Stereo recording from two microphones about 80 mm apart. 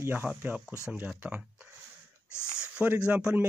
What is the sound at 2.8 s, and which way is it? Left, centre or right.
Speech, centre.